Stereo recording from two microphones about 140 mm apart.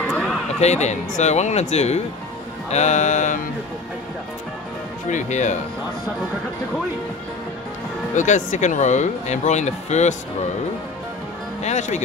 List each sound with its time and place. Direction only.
0.0 s a sound: 5° left (ahead or behind)
0.6 s speech: 50° left (ahead or behind)
5.1 s speech: 60° left (ahead or behind)
8.1 s speech: 60° left (ahead or behind)
11.6 s speech: 55° left (ahead or behind)